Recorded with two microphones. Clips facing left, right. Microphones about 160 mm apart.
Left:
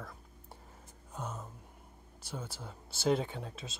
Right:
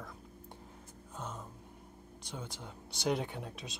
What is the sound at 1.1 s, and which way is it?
Speech, 10° left (ahead or behind).